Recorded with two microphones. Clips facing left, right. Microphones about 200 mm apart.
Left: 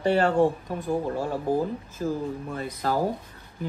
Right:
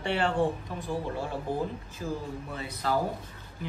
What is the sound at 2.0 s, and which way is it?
Speech, 45° left (ahead or behind).